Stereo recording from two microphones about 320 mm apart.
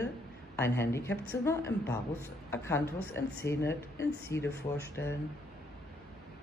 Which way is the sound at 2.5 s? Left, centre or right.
Centre.